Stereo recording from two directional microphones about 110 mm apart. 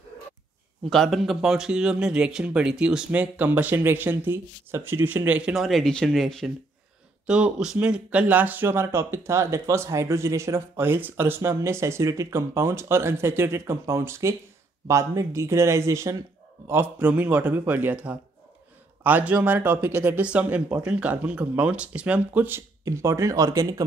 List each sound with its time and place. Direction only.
0.8 s speech: 5° left (ahead or behind); by 5.5 s 15° right (ahead or behind)
5.5 s speech: centre (ahead or behind)
7.2 s speech: 10° right (ahead or behind)
22.8 s speech: 30° right (ahead or behind)